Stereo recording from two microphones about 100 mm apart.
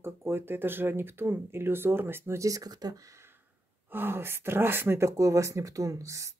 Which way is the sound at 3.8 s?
20° right (ahead or behind).